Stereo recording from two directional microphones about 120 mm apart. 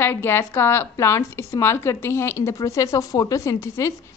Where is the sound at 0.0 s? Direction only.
20° left (ahead or behind).